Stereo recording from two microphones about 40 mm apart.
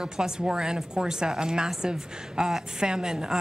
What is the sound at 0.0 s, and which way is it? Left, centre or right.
A woman's voice, centre.